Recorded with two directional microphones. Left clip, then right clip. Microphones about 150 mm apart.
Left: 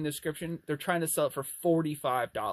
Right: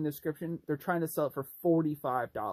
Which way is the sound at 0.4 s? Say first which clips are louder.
Left 1 dB; 10° left (ahead or behind).